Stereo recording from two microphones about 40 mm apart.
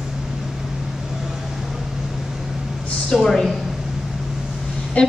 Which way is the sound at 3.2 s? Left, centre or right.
Centre.